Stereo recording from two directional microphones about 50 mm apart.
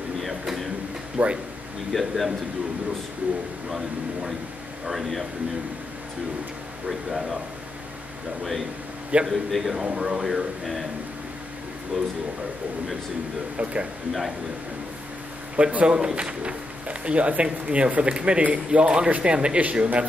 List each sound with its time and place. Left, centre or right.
0.2 s a sound: centre
1.1 s speech: right
1.9 s a man's voice: centre
4.8 s a man's voice: centre
6.9 s a man's voice: centre
9.2 s a man's voice: centre
10.2 s a man's voice: centre
11.9 s speech: centre
13.6 s a man's voice: right
15.5 s a man's voice: right